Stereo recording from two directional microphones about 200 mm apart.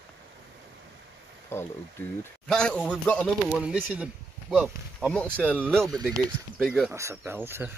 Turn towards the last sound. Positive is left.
turn(degrees=-10)  # may be behind; listen again after turning